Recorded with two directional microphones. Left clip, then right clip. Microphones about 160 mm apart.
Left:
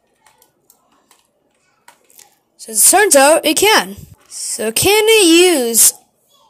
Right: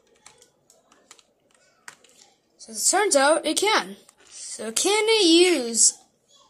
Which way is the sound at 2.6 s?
45° left (ahead or behind).